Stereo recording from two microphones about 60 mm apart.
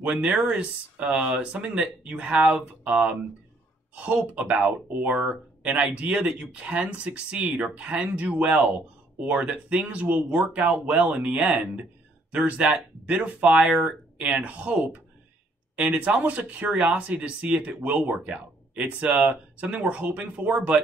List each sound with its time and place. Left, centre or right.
0.0 s speech: centre